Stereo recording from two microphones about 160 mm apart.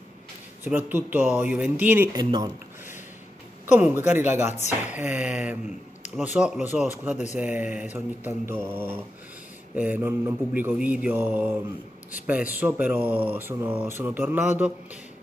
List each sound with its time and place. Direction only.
0.7 s speech: 10° right (ahead or behind)
2.1 s speech: 25° right (ahead or behind)
3.7 s speech: 10° right (ahead or behind)